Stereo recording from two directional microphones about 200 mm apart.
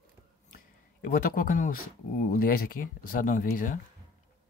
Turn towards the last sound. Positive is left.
turn(degrees=45)  # may be behind; listen again after turning